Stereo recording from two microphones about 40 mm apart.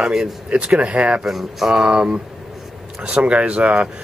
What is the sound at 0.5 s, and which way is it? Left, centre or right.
Speech, right.